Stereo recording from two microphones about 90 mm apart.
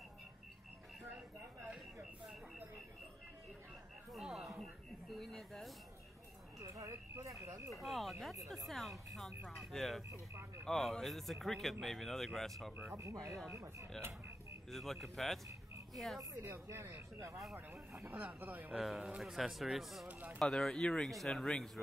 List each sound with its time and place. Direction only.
4.1 s a sound: 5° right (ahead or behind)
5.1 s speech: 5° left (ahead or behind)
6.6 s speech: 40° right (ahead or behind)
7.8 s speech: centre (ahead or behind)
12.9 s speech: 35° right (ahead or behind)
14.7 s speech: centre (ahead or behind)
16.2 s speech: 35° right (ahead or behind)
17.4 s speech: centre (ahead or behind)
18.0 s speech: 20° right (ahead or behind)
18.7 s speech: 5° right (ahead or behind)
20.1 s speech: 15° right (ahead or behind)
20.3 s speech: 5° left (ahead or behind)